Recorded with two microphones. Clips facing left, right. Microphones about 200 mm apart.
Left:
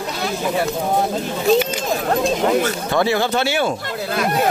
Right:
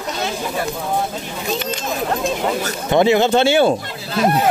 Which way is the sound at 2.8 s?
20° right (ahead or behind).